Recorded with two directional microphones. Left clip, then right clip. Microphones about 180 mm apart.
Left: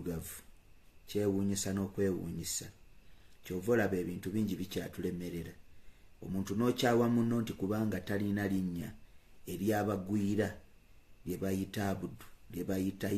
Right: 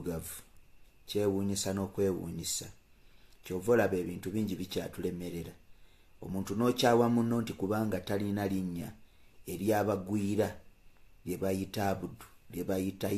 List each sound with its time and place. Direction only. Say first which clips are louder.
0.0 s speech: right 3 dB; 20° left (ahead or behind)